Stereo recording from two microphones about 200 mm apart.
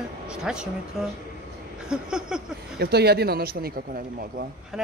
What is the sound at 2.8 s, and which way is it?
Speech, 55° right (ahead or behind).